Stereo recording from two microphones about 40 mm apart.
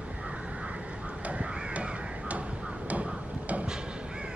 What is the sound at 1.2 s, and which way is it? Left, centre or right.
Crow, right.